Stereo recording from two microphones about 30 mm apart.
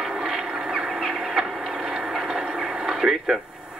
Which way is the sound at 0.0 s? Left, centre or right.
Centre.